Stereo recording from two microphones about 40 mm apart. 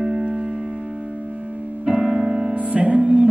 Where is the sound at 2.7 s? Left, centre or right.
Right.